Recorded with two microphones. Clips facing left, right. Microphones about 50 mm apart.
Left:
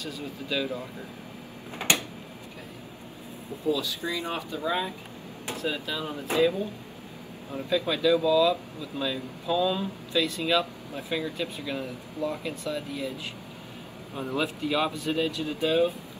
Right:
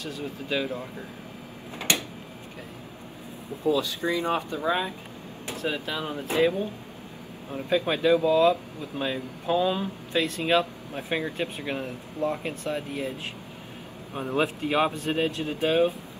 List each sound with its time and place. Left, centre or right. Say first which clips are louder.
0.0 s speech: right 2 dB; right
3.6 s speech: right 3 dB; right
7.7 s speech: right 2 dB; right